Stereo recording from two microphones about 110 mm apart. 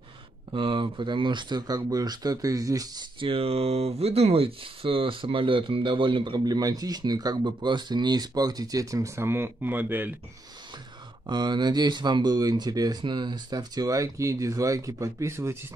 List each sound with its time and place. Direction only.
0.5 s speech: 45° right (ahead or behind)
3.2 s speech: 55° right (ahead or behind); by 10.1 s 15° right (ahead or behind)
11.2 s speech: 40° right (ahead or behind); by 15.5 s 25° right (ahead or behind)